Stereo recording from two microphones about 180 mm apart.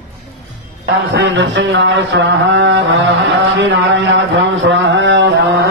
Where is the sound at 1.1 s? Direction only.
75° right (ahead or behind).